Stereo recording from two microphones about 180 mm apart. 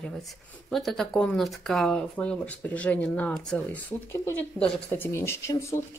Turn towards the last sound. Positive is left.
turn(degrees=15)  # may be behind; listen again after turning